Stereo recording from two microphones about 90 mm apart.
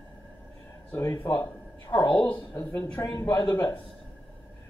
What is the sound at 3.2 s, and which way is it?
Speech, 50° left (ahead or behind).